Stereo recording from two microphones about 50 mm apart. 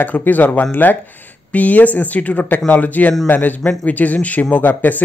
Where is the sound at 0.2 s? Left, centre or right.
Left.